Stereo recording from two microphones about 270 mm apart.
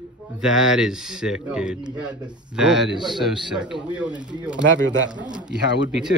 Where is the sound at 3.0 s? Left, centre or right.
Centre.